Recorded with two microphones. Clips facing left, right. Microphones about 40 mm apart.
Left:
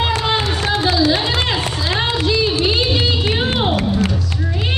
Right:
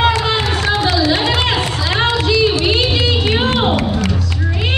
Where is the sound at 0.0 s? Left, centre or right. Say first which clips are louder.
Right 3 dB; right.